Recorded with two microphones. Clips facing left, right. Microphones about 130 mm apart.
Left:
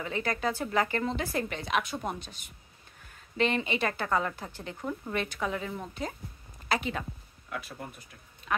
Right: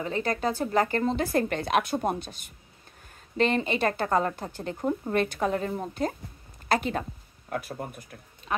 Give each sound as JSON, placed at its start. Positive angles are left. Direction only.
{"t": 0.0, "sound": "speech", "side_deg": -35}
{"t": 3.3, "sound": "speech", "side_deg": -40}
{"t": 5.1, "sound": "a woman's voice", "side_deg": -45}
{"t": 8.5, "sound": "quack", "side_deg": -30}